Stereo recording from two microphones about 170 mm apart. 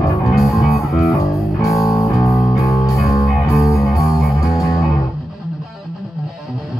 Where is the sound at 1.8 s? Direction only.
20° left (ahead or behind).